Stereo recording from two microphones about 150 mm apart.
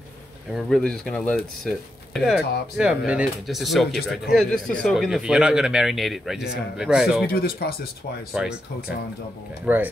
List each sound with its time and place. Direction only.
0.5 s speech: centre (ahead or behind)
7.2 s speech: 85° left
8.3 s speech: 5° right (ahead or behind)